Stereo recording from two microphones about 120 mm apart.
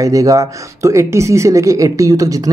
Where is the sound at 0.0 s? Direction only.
30° right (ahead or behind).